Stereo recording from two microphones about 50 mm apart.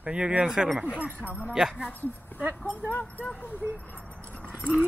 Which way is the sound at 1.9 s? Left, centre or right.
Left.